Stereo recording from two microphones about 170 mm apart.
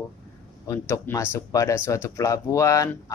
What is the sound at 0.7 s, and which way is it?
Speech, 15° left (ahead or behind).